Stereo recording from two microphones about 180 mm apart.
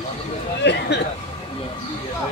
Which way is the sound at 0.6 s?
75° left (ahead or behind).